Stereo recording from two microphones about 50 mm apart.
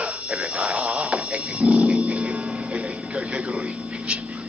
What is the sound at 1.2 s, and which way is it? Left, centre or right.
Roaring cats, right.